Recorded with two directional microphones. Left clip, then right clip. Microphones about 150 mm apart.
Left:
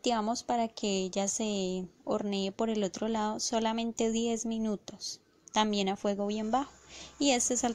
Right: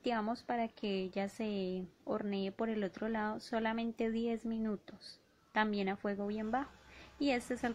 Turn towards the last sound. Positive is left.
turn(degrees=35)  # may be behind; listen again after turning